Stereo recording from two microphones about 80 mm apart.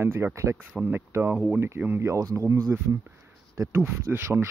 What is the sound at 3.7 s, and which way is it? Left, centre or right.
Speech, right.